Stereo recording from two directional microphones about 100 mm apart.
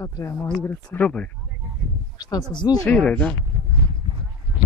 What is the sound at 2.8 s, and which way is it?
Speech, 10° left (ahead or behind).